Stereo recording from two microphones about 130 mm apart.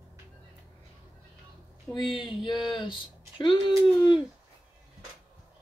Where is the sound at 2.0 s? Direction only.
40° left (ahead or behind).